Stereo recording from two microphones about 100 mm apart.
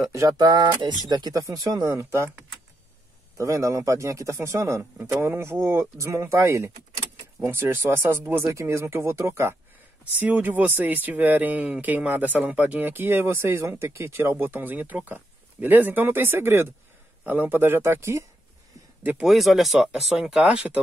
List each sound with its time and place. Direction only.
0.4 s speech: 45° right (ahead or behind); by 18.2 s 25° right (ahead or behind)
19.2 s speech: centre (ahead or behind)